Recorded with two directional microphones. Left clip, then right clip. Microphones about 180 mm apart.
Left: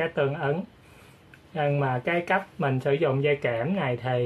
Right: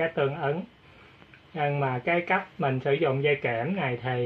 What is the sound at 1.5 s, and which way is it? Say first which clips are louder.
Speech: left 2 dB; 10° right (ahead or behind).